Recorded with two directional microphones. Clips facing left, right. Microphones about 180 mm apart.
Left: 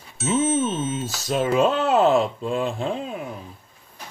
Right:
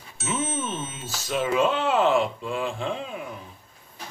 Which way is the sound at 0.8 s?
40° left (ahead or behind).